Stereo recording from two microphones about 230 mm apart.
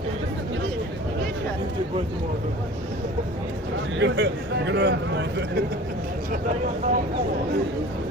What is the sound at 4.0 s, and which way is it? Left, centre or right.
Speech, right.